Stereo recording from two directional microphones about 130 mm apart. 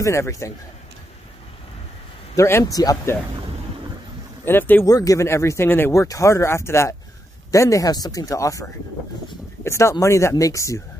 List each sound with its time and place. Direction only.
0.0 s speech: 20° left (ahead or behind)
2.3 s speech: 20° left (ahead or behind)
4.5 s speech: 15° left (ahead or behind)
4.8 s speech: 25° left (ahead or behind)